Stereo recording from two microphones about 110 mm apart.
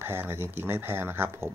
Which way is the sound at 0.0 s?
20° right (ahead or behind).